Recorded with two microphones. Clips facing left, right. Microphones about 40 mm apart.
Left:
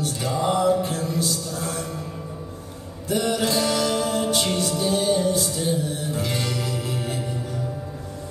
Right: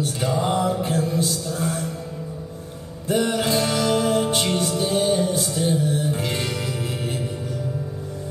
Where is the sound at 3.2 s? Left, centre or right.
Right.